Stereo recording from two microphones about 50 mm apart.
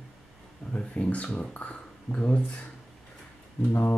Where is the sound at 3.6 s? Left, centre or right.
Left.